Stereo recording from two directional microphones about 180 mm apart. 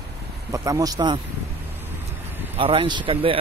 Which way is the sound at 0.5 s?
20° right (ahead or behind).